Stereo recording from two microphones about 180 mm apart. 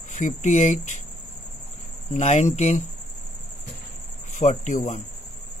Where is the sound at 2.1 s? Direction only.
40° left (ahead or behind).